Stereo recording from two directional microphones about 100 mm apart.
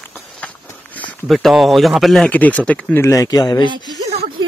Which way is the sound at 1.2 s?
Centre (ahead or behind).